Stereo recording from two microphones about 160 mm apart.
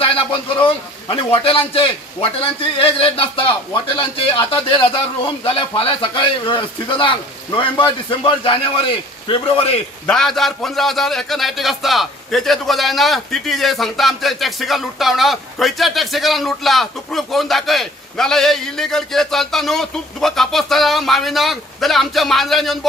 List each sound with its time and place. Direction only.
0.0 s a man's voice: 35° left (ahead or behind)
10.0 s a man's voice: 5° left (ahead or behind)